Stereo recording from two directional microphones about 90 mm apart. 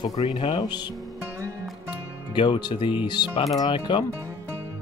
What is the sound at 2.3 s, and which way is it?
Speech, 60° left (ahead or behind).